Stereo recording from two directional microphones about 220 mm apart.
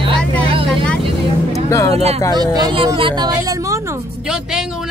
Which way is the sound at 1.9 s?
30° right (ahead or behind).